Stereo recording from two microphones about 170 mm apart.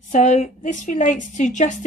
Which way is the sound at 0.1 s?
45° left (ahead or behind).